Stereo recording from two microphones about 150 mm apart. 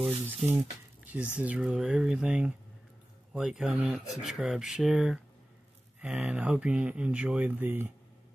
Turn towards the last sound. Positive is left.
turn(degrees=-15)  # may be behind; listen again after turning